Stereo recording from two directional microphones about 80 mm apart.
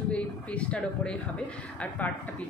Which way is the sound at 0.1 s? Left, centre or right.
Centre.